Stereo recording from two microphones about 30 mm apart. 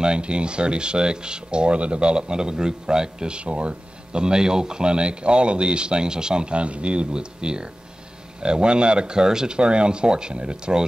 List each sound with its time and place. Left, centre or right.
0.0 s speech: right
9.6 s speech: right